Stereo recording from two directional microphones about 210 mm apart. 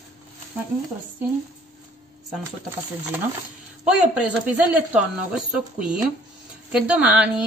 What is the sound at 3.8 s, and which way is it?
Speech, 5° right (ahead or behind).